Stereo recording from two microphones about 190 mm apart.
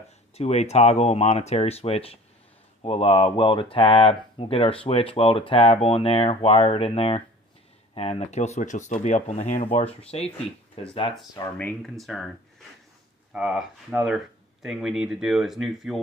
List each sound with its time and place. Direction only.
0.4 s speech: 35° left (ahead or behind)
11.5 s speech: 5° left (ahead or behind)